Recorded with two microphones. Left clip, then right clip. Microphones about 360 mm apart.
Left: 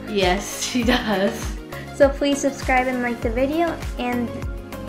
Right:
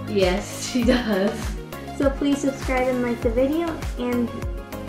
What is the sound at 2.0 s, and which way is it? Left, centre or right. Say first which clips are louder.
A woman's voice: left 5 dB; centre.